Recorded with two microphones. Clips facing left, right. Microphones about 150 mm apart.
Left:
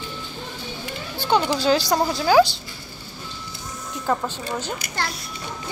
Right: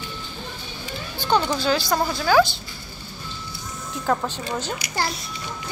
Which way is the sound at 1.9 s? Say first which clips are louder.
Left 2 dB; 20° left (ahead or behind).